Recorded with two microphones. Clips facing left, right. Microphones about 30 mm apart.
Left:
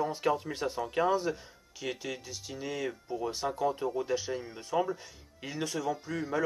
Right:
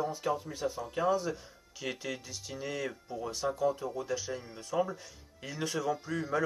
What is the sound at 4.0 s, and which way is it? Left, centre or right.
Speech, left.